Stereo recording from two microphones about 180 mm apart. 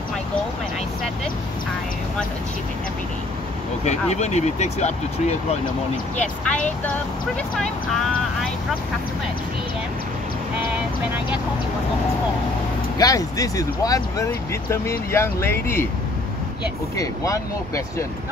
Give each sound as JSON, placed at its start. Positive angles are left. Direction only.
{"t": 3.8, "sound": "speech", "side_deg": 40}
{"t": 6.1, "sound": "speech", "side_deg": 5}
{"t": 12.9, "sound": "speech", "side_deg": 20}
{"t": 16.9, "sound": "speech", "side_deg": 20}